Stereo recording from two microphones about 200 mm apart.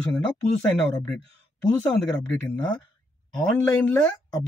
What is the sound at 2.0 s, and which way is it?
Speech, 5° left (ahead or behind).